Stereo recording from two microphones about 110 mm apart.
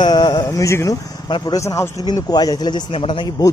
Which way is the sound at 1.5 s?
30° left (ahead or behind).